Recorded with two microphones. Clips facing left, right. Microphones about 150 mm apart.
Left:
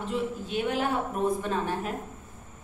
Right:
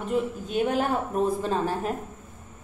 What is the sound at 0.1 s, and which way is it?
A man's voice, 50° right (ahead or behind).